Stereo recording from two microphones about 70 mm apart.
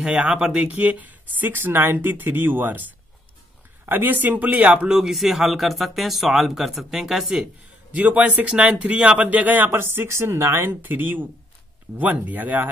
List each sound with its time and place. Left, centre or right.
0.0 s speech: centre
3.8 s a man's voice: right; by 7.4 s centre
7.9 s speech: centre